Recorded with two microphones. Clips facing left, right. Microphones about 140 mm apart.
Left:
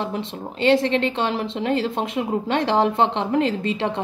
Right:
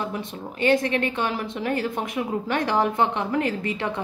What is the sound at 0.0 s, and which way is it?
A woman's voice, 25° left (ahead or behind).